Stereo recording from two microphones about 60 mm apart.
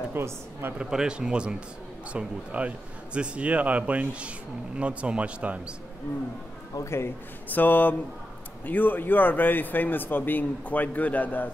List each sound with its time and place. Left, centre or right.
0.1 s a woman's voice: right
0.7 s a man's voice: centre
7.4 s a man's voice: left